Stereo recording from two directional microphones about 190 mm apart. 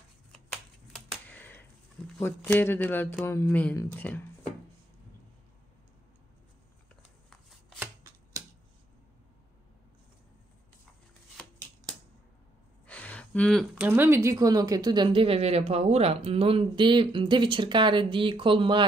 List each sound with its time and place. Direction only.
0.5 s finger snapping: 5° left (ahead or behind)
2.1 s speech: 10° left (ahead or behind)
7.8 s shuffling cards: 15° right (ahead or behind)
12.8 s a sound: 5° left (ahead or behind)
13.8 s speech: 10° right (ahead or behind); by 18.9 s 25° right (ahead or behind)